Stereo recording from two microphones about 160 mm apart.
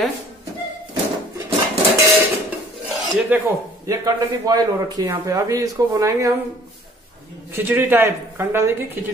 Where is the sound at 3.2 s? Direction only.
10° right (ahead or behind).